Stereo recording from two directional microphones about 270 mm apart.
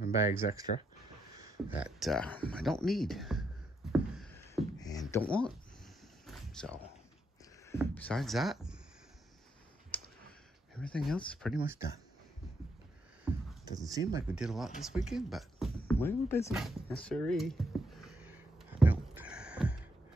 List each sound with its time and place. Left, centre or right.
0.4 s speech: left
1.4 s speech: centre
4.1 s music: centre
4.7 s a sound: centre
5.1 s speech: centre
6.2 s a sound: centre
7.8 s speech: centre
9.9 s clicking: centre
10.7 s speech: centre
13.2 s a sound: centre
14.3 s speech: centre
18.0 s a sound: centre